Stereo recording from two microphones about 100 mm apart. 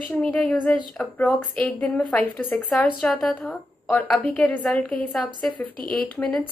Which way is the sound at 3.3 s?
15° left (ahead or behind).